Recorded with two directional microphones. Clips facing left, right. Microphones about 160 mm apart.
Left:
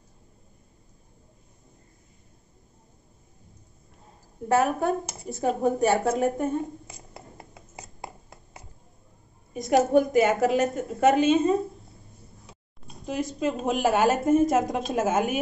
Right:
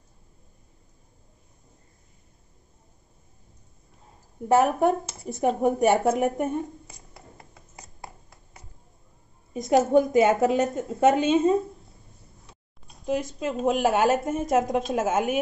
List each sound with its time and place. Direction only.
4.6 s a woman's voice: 15° right (ahead or behind)
9.5 s a woman's voice: 25° right (ahead or behind)
13.0 s a woman's voice: 15° right (ahead or behind)